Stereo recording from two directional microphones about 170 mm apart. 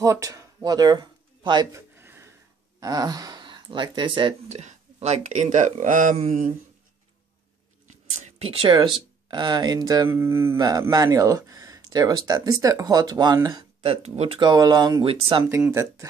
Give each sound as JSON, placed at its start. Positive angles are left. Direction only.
{"t": 0.0, "sound": "a sound", "side_deg": -20}
{"t": 2.8, "sound": "speech", "side_deg": -20}
{"t": 7.9, "sound": "speech", "side_deg": -35}
{"t": 13.8, "sound": "speech", "side_deg": -40}
{"t": 14.4, "sound": "speech", "side_deg": -20}
{"t": 15.4, "sound": "speech", "side_deg": -15}